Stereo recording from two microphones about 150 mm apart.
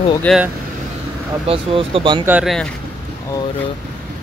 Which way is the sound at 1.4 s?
40° right (ahead or behind).